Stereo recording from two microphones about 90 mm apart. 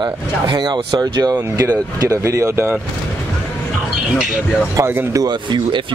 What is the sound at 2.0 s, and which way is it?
Speech, 35° right (ahead or behind).